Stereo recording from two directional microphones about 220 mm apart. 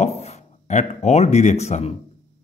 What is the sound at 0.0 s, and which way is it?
Speech, 30° left (ahead or behind).